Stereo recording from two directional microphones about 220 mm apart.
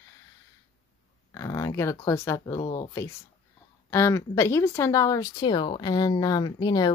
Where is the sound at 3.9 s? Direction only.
10° left (ahead or behind).